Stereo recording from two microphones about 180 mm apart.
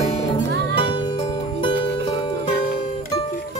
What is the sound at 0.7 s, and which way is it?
Music, 30° left (ahead or behind).